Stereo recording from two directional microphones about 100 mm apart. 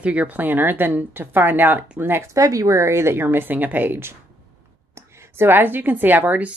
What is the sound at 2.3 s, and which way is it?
A woman's voice, 35° right (ahead or behind).